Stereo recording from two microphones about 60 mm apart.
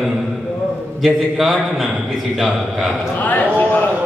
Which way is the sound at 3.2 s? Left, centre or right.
Left.